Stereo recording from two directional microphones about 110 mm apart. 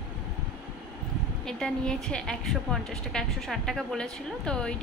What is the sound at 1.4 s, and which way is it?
A woman's voice, 5° left (ahead or behind).